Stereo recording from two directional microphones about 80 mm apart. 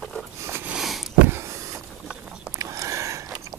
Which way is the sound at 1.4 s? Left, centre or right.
Right.